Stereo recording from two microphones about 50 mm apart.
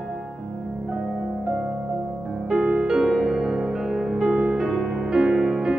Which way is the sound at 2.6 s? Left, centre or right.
Right.